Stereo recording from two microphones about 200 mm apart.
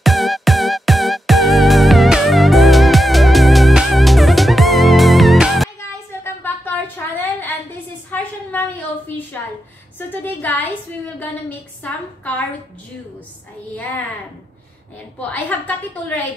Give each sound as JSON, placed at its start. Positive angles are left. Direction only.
{"t": 0.0, "sound": "music", "side_deg": 0}
{"t": 5.8, "sound": "a sound", "side_deg": 10}
{"t": 9.9, "sound": "a sound", "side_deg": 10}
{"t": 11.1, "sound": "a woman's voice", "side_deg": 10}
{"t": 13.7, "sound": "a woman's voice", "side_deg": 10}
{"t": 15.1, "sound": "a woman's voice", "side_deg": 5}